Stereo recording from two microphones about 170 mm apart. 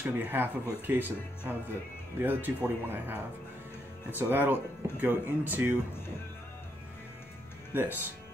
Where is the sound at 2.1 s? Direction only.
10° right (ahead or behind).